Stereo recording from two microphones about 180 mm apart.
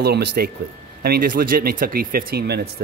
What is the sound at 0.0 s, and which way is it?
Speech, 60° right (ahead or behind).